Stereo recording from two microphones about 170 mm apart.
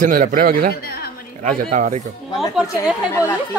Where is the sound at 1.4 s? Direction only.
50° right (ahead or behind).